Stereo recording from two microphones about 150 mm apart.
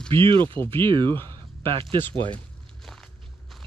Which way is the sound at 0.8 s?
30° right (ahead or behind).